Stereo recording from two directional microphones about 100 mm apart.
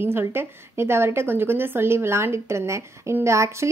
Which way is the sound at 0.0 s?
25° right (ahead or behind).